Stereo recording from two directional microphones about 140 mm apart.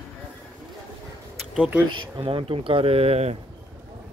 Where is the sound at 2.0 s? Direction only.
35° right (ahead or behind).